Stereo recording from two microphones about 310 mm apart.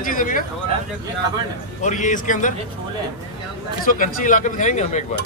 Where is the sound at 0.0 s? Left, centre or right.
Left.